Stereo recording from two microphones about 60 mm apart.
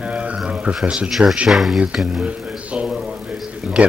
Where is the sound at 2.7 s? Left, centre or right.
Centre.